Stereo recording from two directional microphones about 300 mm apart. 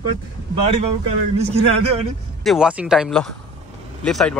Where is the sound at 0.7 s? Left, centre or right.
Centre.